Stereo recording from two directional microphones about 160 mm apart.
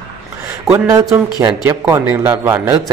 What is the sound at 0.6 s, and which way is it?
A man's voice, 20° right (ahead or behind).